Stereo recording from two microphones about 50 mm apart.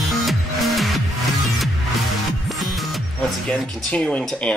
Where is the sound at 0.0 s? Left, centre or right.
Centre.